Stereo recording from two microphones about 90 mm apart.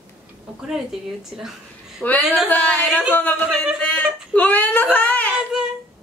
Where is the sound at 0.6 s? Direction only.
5° right (ahead or behind).